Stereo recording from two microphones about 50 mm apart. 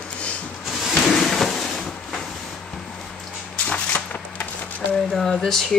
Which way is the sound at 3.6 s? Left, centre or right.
Left.